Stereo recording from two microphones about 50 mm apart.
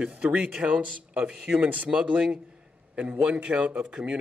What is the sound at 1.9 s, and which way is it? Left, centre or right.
Speech, centre.